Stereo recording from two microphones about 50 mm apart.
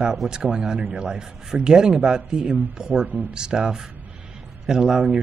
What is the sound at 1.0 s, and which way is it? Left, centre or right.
Speech, centre.